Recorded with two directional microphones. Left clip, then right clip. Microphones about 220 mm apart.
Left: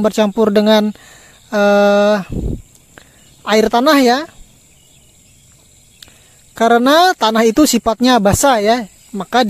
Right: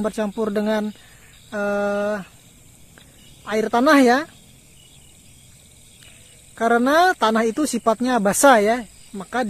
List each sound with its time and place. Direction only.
0.0 s speech: 40° left (ahead or behind)
6.5 s speech: 45° left (ahead or behind)